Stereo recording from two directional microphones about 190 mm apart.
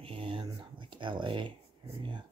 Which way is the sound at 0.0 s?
30° right (ahead or behind).